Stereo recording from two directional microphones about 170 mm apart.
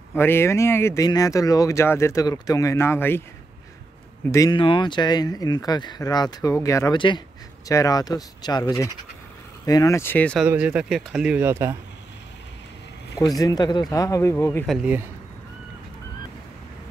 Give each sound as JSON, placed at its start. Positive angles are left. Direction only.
{"t": 0.1, "sound": "speech", "side_deg": 15}
{"t": 4.3, "sound": "speech", "side_deg": 20}
{"t": 10.4, "sound": "speech", "side_deg": -5}
{"t": 13.4, "sound": "speech", "side_deg": 25}
{"t": 14.7, "sound": "speech", "side_deg": -5}